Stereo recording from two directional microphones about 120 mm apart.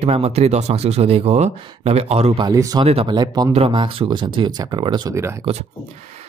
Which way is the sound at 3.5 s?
45° right (ahead or behind).